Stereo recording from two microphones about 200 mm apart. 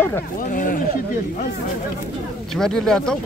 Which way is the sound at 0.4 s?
45° left (ahead or behind).